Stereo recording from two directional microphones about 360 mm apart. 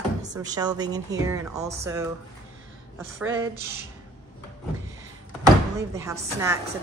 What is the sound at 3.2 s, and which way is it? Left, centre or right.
Speech, centre.